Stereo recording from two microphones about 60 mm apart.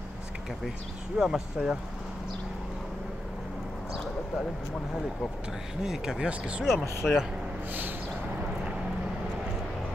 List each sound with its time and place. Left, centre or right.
1.1 s speech: centre
5.8 s speech: centre
6.7 s speech: left